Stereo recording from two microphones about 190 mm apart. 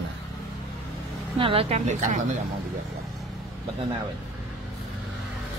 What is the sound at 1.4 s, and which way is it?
Speech, 30° right (ahead or behind).